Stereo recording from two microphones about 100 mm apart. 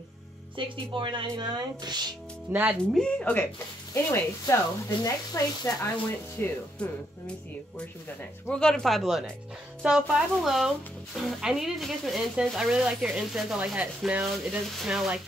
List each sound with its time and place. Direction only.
0.6 s speech: 55° right (ahead or behind)
2.5 s rub: 15° right (ahead or behind)
2.9 s speech: 10° left (ahead or behind)
3.9 s speech: 25° left (ahead or behind)
6.4 s speech: 20° left (ahead or behind)
8.2 s speech: 10° left (ahead or behind)
13.7 s rub: 10° right (ahead or behind)
14.2 s speech: 5° right (ahead or behind)